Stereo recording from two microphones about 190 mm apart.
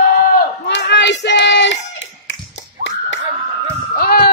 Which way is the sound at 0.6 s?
65° left (ahead or behind).